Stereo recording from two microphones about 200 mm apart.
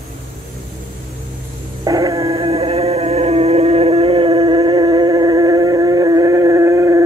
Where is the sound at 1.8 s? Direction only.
15° right (ahead or behind).